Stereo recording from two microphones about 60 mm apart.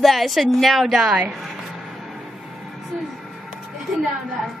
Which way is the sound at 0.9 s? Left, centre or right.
Centre.